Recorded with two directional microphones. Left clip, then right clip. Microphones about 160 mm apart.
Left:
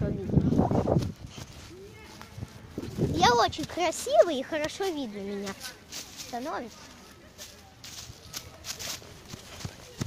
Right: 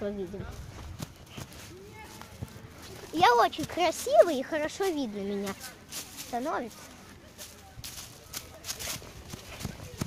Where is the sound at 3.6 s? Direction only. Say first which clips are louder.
Right 1 dB; centre (ahead or behind).